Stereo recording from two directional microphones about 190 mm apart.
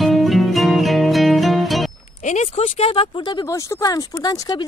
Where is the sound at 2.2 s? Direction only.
40° left (ahead or behind).